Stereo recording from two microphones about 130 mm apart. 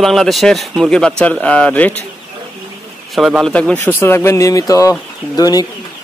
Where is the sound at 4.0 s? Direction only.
20° left (ahead or behind).